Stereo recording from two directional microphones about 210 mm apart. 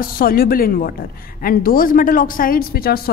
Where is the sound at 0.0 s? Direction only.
45° left (ahead or behind).